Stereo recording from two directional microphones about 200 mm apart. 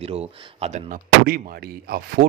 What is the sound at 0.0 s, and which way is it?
Speech, 30° right (ahead or behind).